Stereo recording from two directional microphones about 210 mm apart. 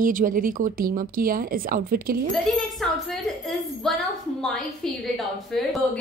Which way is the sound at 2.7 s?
Centre (ahead or behind).